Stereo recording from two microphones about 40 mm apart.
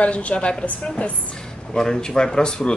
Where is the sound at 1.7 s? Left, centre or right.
Centre.